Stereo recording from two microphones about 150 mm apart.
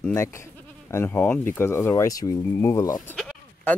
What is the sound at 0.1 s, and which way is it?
Speech, 20° left (ahead or behind).